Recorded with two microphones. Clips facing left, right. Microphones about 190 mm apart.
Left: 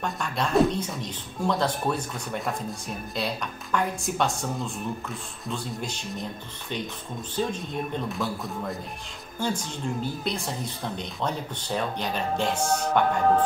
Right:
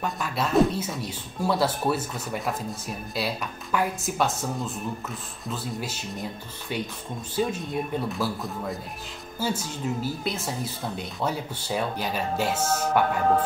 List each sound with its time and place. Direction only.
0.0 s speech: 5° right (ahead or behind)
7.3 s speech: 5° right (ahead or behind)